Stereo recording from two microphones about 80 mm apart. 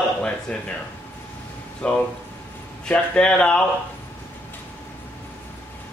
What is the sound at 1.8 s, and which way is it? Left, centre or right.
A man's voice, centre.